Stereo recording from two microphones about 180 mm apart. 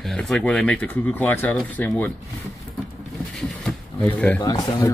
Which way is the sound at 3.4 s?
Centre (ahead or behind).